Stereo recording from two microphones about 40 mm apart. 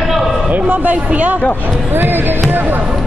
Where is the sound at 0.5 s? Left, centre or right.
Right.